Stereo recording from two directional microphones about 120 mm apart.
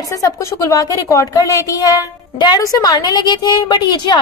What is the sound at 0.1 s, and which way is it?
A woman's voice, 25° left (ahead or behind).